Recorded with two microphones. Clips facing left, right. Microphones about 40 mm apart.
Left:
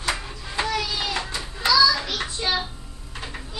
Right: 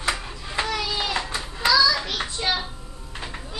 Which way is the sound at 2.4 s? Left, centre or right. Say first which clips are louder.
Even; centre.